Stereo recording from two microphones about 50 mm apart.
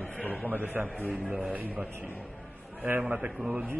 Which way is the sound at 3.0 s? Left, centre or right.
Right.